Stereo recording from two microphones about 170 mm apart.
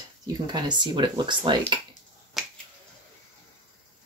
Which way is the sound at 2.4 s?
Centre (ahead or behind).